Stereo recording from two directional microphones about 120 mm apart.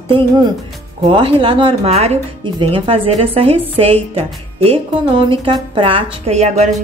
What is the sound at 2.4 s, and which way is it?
A woman's voice, 45° right (ahead or behind).